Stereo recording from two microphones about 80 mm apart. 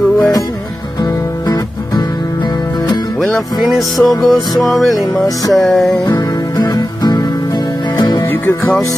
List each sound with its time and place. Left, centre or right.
3.6 s music: centre
6.1 s music: left
8.3 s music: left